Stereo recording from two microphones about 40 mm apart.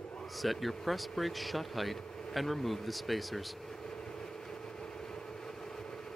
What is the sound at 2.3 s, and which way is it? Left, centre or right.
Vehicle, centre.